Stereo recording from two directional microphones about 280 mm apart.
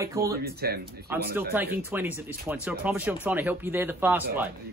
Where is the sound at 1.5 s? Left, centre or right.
Centre.